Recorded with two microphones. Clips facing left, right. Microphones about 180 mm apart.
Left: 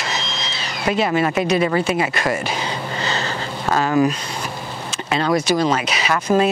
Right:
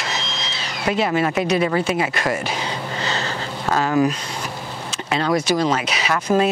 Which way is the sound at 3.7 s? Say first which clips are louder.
Left 1 dB; 15° left (ahead or behind).